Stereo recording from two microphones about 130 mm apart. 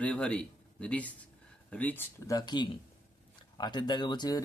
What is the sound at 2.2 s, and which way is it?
Speech, 30° left (ahead or behind).